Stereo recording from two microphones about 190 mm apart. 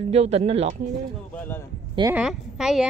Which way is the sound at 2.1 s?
5° right (ahead or behind).